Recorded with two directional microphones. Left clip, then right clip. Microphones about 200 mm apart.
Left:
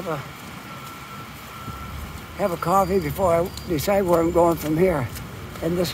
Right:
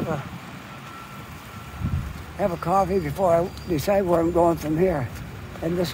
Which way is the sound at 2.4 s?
10° left (ahead or behind).